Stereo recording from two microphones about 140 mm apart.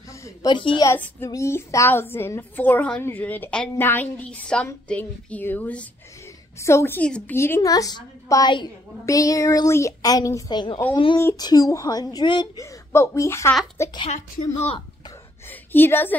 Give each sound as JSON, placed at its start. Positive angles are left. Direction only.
{"t": 0.2, "sound": "a sound", "side_deg": 25}
{"t": 0.6, "sound": "a woman's voice", "side_deg": 35}
{"t": 0.8, "sound": "a child's voice", "side_deg": 15}
{"t": 12.9, "sound": "a woman's voice", "side_deg": 20}
{"t": 15.7, "sound": "a child's voice", "side_deg": 15}